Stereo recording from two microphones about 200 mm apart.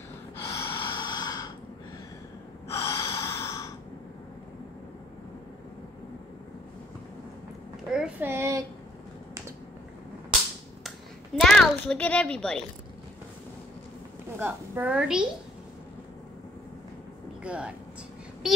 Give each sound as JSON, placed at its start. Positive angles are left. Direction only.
{"t": 0.4, "sound": "gasp", "side_deg": 15}
{"t": 0.7, "sound": "a sound", "side_deg": 25}
{"t": 2.7, "sound": "gasp", "side_deg": 15}
{"t": 7.9, "sound": "child singing", "side_deg": -5}
{"t": 11.3, "sound": "a child's voice", "side_deg": 0}
{"t": 14.4, "sound": "a woman's voice", "side_deg": -5}
{"t": 17.4, "sound": "speech", "side_deg": -5}